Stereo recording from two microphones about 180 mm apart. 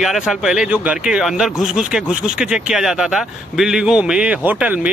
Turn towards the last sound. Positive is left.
turn(degrees=-10)  # may be behind; listen again after turning